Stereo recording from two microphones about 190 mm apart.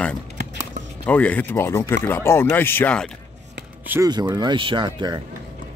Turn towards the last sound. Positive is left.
turn(degrees=-25)  # may be behind; listen again after turning